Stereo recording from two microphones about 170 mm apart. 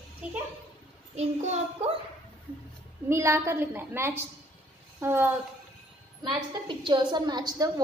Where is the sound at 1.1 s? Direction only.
40° right (ahead or behind).